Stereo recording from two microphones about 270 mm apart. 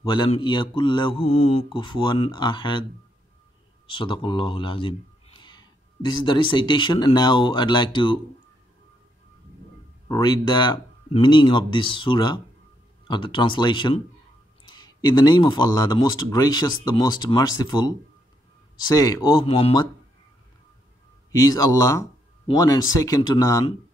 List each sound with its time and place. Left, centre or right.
0.0 s speech: centre
3.8 s speech: centre
10.0 s speech: centre
21.3 s speech: centre